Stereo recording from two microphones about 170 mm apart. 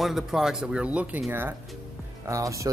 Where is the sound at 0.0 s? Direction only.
Centre (ahead or behind).